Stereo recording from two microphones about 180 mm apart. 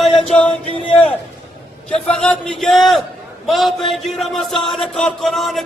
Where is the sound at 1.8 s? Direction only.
5° left (ahead or behind).